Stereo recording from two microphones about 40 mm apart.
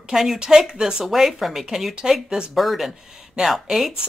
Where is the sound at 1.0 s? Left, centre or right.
Centre.